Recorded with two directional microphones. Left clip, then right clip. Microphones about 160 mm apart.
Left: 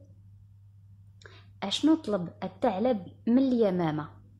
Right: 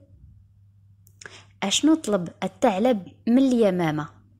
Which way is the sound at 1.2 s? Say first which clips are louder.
Right 7 dB; 25° right (ahead or behind).